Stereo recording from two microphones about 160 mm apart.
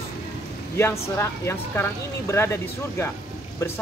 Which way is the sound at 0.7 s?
15° left (ahead or behind).